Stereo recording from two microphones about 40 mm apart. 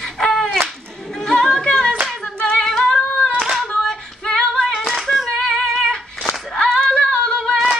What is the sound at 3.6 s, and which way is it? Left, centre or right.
Female singing, centre.